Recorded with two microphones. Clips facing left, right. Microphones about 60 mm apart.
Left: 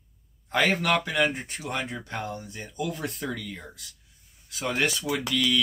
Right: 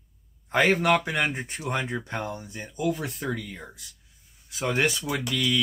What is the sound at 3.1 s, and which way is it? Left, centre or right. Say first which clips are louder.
Speech: right 2 dB; centre.